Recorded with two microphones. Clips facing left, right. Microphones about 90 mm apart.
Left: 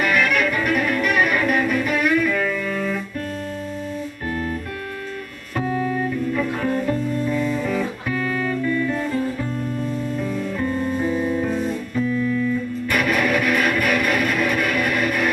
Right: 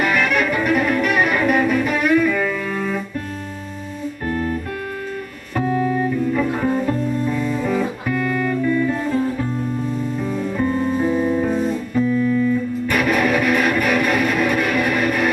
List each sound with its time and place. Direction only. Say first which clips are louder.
0.0 s music: right 1 dB; 5° right (ahead or behind)
4.3 s music: right 4 dB; 10° right (ahead or behind)
5.6 s music: right 3 dB; 5° right (ahead or behind)
12.1 s music: right 4 dB; 20° right (ahead or behind)
12.8 s music: right 2 dB; centre (ahead or behind)